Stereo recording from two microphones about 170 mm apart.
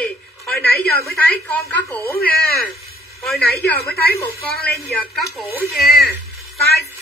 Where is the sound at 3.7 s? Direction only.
70° left (ahead or behind).